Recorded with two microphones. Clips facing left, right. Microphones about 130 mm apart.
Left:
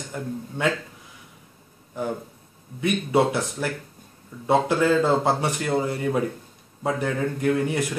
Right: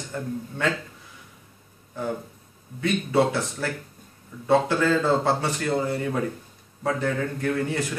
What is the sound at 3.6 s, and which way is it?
A man's voice, 15° left (ahead or behind).